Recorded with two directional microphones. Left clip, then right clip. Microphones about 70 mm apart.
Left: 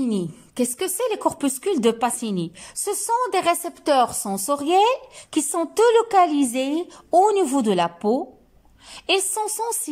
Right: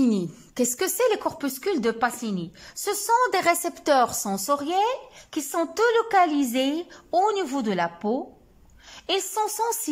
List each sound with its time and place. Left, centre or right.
0.0 s a woman's voice: centre; by 3.3 s left
3.3 s a woman's voice: centre
4.4 s a woman's voice: left